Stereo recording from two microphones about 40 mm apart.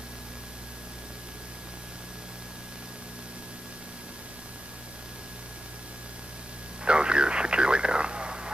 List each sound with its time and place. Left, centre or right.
6.8 s radio: right